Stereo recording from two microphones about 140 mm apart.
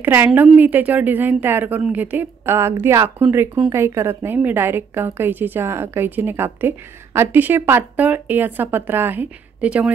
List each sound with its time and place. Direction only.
0.0 s a woman's voice: 15° right (ahead or behind)